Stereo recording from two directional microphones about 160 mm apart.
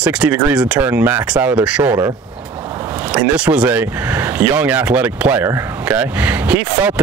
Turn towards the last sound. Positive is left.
turn(degrees=-10)  # may be behind; listen again after turning